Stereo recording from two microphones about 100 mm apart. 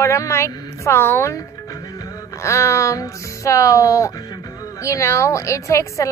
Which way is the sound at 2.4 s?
30° left (ahead or behind).